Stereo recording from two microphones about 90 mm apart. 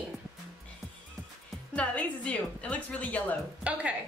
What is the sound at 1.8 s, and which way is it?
A woman's voice, 15° left (ahead or behind).